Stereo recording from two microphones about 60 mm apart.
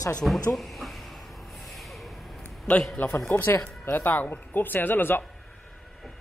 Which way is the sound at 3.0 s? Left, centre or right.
Left.